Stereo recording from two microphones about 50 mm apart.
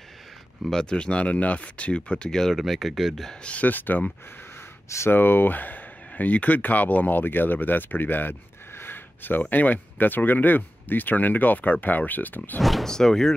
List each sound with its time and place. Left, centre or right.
0.7 s speech: centre
2.5 s speech: centre
3.4 s speech: left
4.8 s speech: left
5.1 s speech: left
12.8 s speech: centre